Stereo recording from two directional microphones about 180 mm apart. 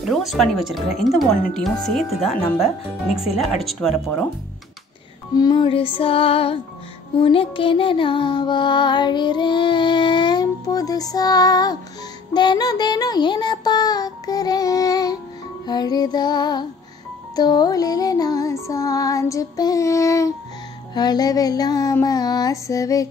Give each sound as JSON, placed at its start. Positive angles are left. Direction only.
{"t": 0.1, "sound": "speech", "side_deg": 0}
{"t": 5.3, "sound": "music", "side_deg": 25}